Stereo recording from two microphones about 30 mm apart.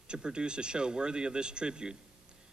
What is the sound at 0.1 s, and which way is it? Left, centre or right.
Speech, right.